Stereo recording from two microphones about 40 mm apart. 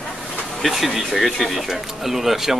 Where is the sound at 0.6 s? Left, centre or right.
Centre.